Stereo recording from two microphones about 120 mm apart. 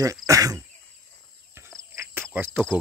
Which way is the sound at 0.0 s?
25° right (ahead or behind).